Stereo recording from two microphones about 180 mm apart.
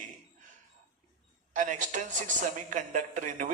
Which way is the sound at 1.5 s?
45° right (ahead or behind).